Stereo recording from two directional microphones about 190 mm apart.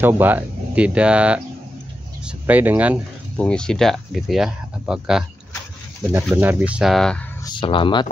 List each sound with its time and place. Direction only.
0.0 s speech: 10° right (ahead or behind)
3.3 s speech: 5° left (ahead or behind)
7.4 s speech: 25° left (ahead or behind)